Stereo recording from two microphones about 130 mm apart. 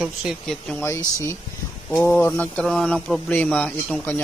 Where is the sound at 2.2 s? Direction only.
20° left (ahead or behind).